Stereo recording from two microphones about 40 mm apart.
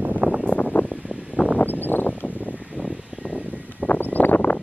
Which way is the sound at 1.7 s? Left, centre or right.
Left.